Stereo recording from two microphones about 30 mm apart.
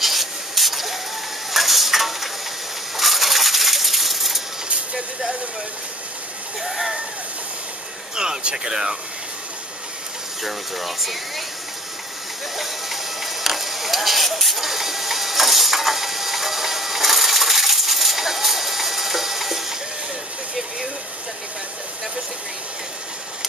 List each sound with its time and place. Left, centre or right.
0.0 s spray: centre
1.5 s stir: centre
3.0 s a sound: centre
6.6 s speech: centre
8.2 s speech: right
10.4 s speech: centre
12.5 s music: centre